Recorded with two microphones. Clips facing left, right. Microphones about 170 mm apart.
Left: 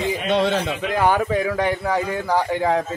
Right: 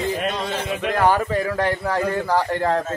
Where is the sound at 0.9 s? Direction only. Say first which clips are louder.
Even; centre (ahead or behind).